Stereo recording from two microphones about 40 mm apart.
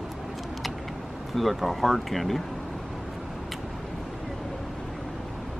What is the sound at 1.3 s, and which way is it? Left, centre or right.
Speech, centre.